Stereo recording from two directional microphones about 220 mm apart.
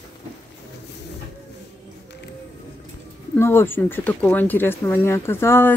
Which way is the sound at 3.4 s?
10° left (ahead or behind).